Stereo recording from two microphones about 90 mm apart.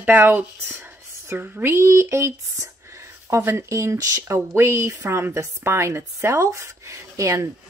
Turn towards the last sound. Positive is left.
turn(degrees=-35)  # may be behind; listen again after turning